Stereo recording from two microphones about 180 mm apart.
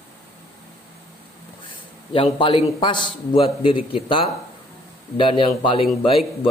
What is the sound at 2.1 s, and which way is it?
A man's voice, 30° left (ahead or behind).